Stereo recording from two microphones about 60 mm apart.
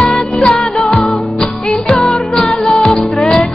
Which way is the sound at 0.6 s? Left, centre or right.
Centre.